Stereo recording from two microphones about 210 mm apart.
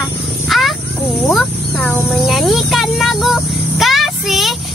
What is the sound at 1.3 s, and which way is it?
Speech, 5° left (ahead or behind).